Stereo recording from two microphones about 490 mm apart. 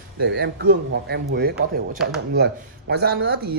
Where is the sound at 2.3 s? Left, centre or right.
Centre.